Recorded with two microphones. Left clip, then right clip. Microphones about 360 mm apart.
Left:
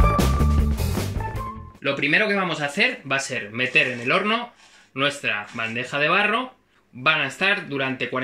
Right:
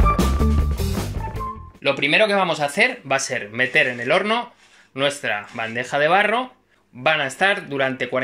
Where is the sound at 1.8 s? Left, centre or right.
Centre.